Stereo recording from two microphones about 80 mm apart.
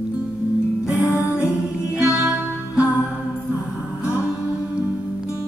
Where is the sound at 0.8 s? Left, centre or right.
Centre.